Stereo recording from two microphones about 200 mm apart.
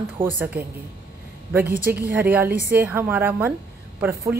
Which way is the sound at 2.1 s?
10° right (ahead or behind).